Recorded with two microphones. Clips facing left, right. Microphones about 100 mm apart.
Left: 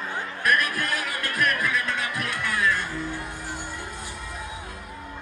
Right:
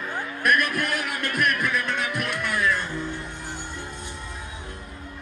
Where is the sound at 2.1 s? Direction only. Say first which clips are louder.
Right 1 dB; 60° right (ahead or behind).